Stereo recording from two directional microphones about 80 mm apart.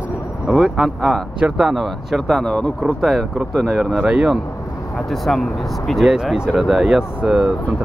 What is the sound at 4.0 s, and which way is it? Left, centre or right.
Speech, centre.